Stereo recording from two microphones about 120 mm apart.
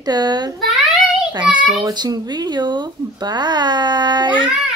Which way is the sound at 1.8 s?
35° right (ahead or behind).